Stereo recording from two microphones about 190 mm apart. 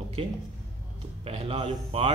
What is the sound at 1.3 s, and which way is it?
Speech, 30° right (ahead or behind).